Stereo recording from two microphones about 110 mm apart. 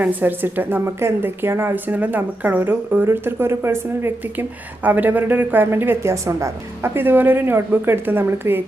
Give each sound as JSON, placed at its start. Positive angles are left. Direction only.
{"t": 0.0, "sound": "a woman's voice", "side_deg": -15}